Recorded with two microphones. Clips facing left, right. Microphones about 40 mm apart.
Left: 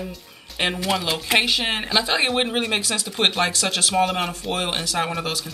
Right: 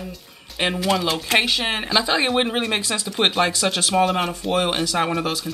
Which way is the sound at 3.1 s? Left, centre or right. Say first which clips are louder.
Right 2 dB; centre.